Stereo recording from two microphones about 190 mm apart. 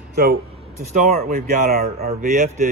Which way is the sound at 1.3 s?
50° right (ahead or behind).